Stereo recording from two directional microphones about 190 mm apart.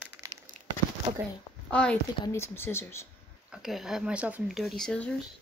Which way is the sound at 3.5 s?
Centre (ahead or behind).